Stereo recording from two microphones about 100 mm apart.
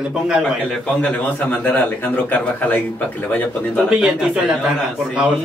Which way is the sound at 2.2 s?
15° left (ahead or behind).